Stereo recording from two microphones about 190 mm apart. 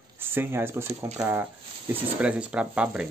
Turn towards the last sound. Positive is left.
turn(degrees=-5)  # may be behind; listen again after turning